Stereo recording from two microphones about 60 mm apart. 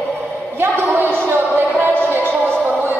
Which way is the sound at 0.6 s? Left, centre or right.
Right.